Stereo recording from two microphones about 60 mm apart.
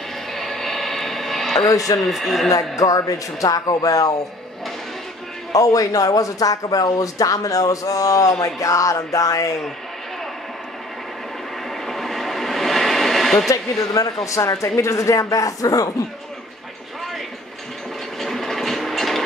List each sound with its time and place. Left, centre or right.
0.3 s a sound: centre
2.0 s speech: centre
2.8 s speech: left
5.5 s speech: left
11.8 s a sound: centre
13.5 s speech: left
18.2 s printer: centre